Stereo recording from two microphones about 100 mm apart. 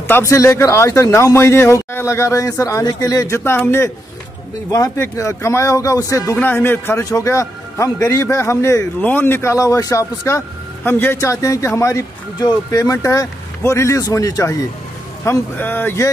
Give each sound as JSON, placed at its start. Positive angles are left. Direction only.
{"t": 0.2, "sound": "speech", "side_deg": 30}
{"t": 4.6, "sound": "speech", "side_deg": 35}
{"t": 6.3, "sound": "speech", "side_deg": 20}
{"t": 7.1, "sound": "speech", "side_deg": 30}
{"t": 11.1, "sound": "speech", "side_deg": 30}
{"t": 12.4, "sound": "speech", "side_deg": 40}
{"t": 15.2, "sound": "speech", "side_deg": 20}